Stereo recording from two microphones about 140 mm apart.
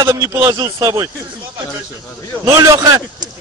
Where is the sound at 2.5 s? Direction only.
25° right (ahead or behind).